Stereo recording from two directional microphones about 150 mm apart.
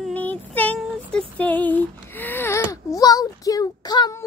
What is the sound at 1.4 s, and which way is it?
Speech, 10° left (ahead or behind).